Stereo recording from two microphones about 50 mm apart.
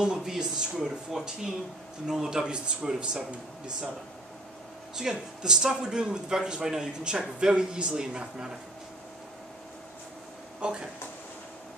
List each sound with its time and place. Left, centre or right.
0.0 s a man's voice: centre
4.9 s a man's voice: centre
10.6 s speech: centre